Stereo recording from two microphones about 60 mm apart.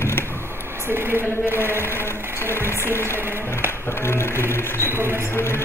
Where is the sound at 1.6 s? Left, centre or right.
Left.